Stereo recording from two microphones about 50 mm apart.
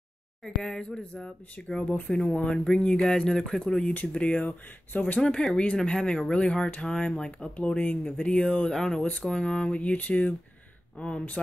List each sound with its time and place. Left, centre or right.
0.4 s speech: centre
7.6 s speech: left
11.0 s speech: centre